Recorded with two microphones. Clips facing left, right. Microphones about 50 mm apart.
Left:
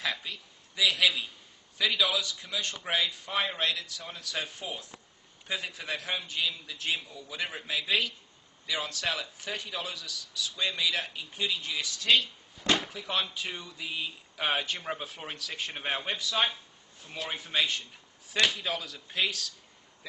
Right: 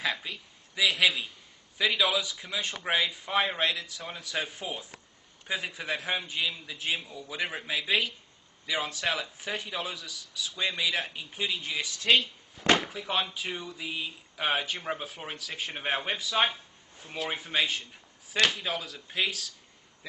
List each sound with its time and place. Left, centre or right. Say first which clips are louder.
0.0 s a man's voice: right 2 dB; centre
12.6 s a sound: right 4 dB; centre
12.9 s a man's voice: right 2 dB; centre